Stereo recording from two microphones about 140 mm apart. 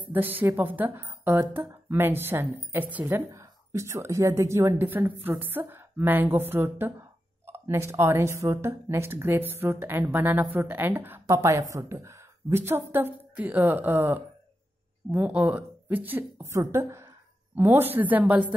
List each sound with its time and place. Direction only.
0.0 s a woman's voice: 15° right (ahead or behind)